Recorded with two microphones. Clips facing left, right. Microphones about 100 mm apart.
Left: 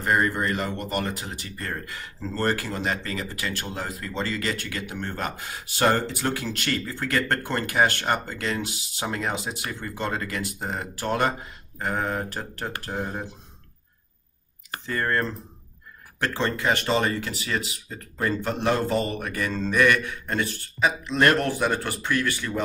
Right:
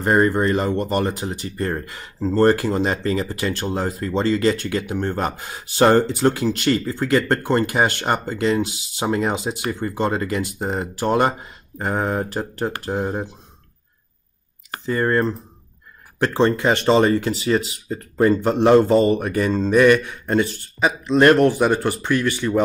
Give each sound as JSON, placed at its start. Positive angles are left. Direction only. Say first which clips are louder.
{"t": 0.0, "sound": "speech", "louder": "right 6 dB", "side_deg": -30}
{"t": 14.9, "sound": "speech", "louder": "right 7 dB", "side_deg": -20}